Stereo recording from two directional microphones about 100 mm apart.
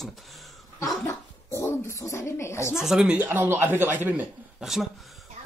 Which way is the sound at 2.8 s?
5° right (ahead or behind).